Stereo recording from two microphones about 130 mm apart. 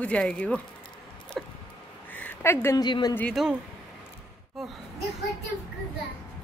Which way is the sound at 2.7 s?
35° left (ahead or behind).